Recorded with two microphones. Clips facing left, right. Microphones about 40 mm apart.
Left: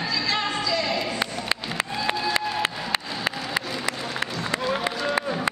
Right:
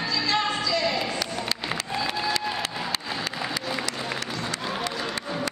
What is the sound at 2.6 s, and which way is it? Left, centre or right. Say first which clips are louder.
Music: left 3 dB; left.